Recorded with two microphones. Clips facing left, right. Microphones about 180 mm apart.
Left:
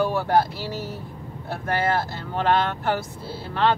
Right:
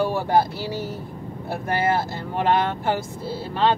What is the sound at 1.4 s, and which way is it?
Speech, 10° right (ahead or behind).